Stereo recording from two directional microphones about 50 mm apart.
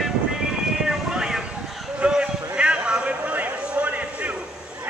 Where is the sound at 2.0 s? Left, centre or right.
Right.